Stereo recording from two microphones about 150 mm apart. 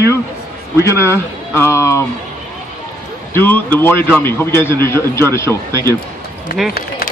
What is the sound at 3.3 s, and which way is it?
A man's voice, 15° left (ahead or behind).